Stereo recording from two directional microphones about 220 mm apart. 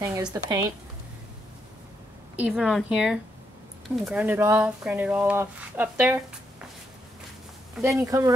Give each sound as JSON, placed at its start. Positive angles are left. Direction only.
{"t": 0.0, "sound": "speech", "side_deg": -15}
{"t": 2.3, "sound": "speech", "side_deg": -5}
{"t": 7.8, "sound": "speech", "side_deg": -10}